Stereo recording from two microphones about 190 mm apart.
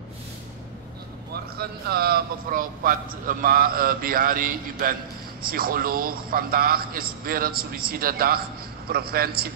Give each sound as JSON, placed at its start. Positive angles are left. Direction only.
{"t": 1.3, "sound": "a man's voice", "side_deg": -55}